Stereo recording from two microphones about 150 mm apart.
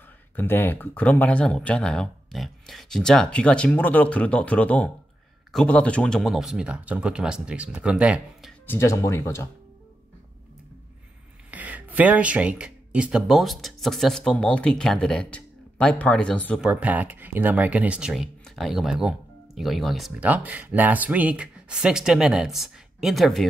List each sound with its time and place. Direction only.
0.4 s speech: 15° left (ahead or behind); by 8.5 s 5° right (ahead or behind)
8.6 s speech: 20° left (ahead or behind)
11.5 s speech: 10° right (ahead or behind); by 16.6 s 10° left (ahead or behind)
16.6 s speech: 10° right (ahead or behind)
20.2 s speech: 10° right (ahead or behind)